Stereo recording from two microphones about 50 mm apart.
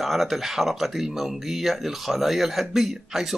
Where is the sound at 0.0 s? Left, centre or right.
Centre.